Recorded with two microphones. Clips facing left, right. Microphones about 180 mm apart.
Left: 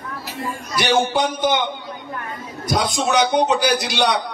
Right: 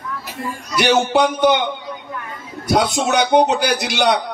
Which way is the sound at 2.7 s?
65° right (ahead or behind).